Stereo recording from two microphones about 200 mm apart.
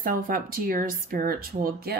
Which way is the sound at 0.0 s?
45° right (ahead or behind).